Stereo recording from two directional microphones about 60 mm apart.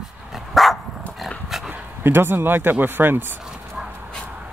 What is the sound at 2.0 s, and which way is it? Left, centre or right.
Speech, right.